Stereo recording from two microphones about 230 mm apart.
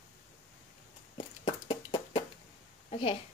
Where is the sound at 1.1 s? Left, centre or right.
Left.